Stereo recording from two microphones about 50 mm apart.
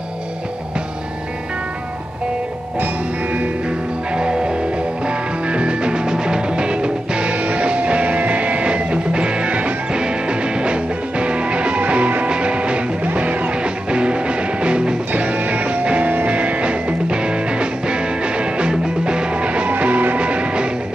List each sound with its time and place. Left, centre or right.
4.1 s music: centre